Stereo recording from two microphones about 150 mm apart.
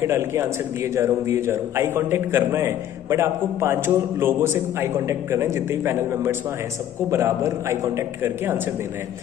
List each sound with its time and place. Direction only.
0.0 s a man's voice: 20° right (ahead or behind)